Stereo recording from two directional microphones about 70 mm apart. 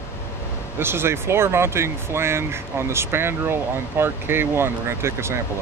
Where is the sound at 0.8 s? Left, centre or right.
Right.